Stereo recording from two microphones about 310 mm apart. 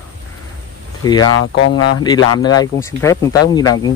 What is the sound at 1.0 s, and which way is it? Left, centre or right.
Speech, centre.